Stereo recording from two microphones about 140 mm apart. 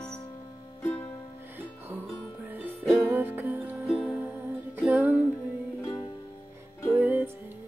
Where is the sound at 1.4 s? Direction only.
15° right (ahead or behind).